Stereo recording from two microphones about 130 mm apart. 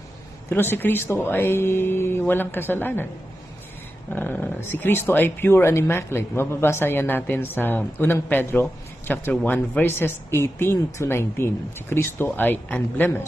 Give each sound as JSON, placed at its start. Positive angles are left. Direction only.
{"t": 0.5, "sound": "speech", "side_deg": 15}
{"t": 4.1, "sound": "speech", "side_deg": 15}